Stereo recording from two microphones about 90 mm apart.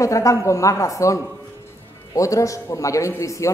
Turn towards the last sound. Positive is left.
turn(degrees=35)  # may be behind; listen again after turning